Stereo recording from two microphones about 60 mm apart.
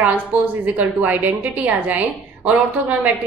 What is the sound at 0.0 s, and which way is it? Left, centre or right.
A woman's voice, right.